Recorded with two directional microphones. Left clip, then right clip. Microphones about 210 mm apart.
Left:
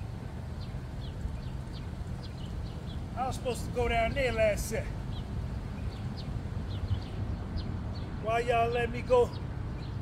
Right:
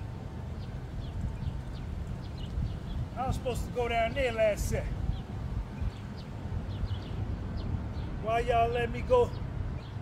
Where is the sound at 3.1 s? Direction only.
5° left (ahead or behind).